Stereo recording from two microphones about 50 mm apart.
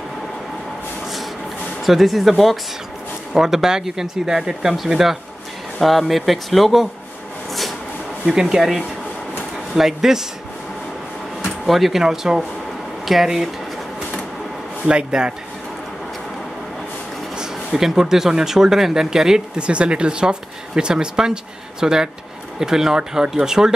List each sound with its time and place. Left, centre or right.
1.8 s speech: centre
8.3 s speech: centre
9.8 s speech: centre
11.4 s speech: centre
14.9 s speech: centre
17.4 s speech: centre